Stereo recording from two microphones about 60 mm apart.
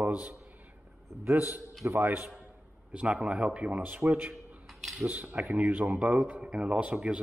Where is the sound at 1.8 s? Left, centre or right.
Right.